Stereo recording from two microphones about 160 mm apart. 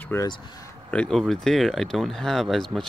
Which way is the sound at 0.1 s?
20° left (ahead or behind).